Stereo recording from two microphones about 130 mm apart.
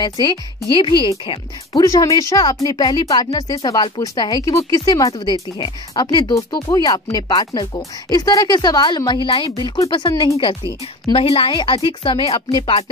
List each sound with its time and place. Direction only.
0.7 s speech: 40° left (ahead or behind)
1.8 s a woman's voice: 25° left (ahead or behind); by 12.8 s 45° left (ahead or behind)